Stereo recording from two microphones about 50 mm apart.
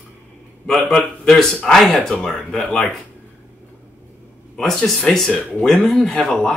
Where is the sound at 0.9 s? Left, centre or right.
Centre.